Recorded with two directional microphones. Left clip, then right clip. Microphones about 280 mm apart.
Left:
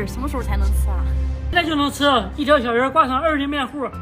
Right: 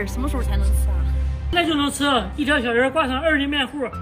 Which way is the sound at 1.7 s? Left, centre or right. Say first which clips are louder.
Left 5 dB; centre.